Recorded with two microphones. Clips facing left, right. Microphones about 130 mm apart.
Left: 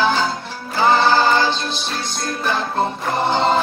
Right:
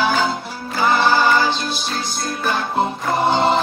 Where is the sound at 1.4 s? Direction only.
10° right (ahead or behind).